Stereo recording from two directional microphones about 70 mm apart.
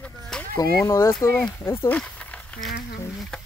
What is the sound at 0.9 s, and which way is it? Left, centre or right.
Speech, left.